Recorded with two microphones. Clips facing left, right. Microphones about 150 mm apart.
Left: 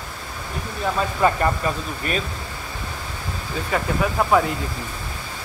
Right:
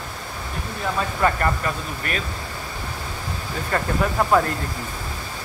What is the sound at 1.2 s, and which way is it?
Speech, 20° left (ahead or behind).